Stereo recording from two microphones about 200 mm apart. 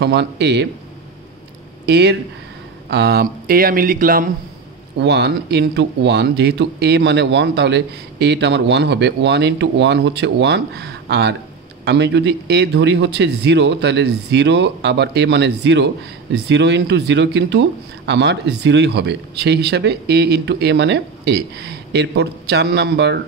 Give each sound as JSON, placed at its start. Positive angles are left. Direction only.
{"t": 0.0, "sound": "speech", "side_deg": -60}
{"t": 1.9, "sound": "speech", "side_deg": -55}
{"t": 4.9, "sound": "speech", "side_deg": -55}